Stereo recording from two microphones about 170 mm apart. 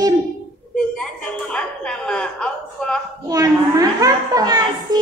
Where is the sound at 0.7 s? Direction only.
5° left (ahead or behind).